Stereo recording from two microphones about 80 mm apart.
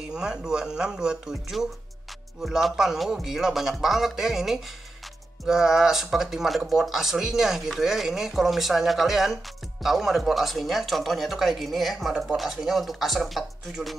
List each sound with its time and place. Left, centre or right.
0.1 s speech: centre